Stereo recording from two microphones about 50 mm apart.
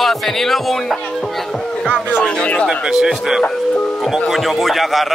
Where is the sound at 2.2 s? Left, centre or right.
Left.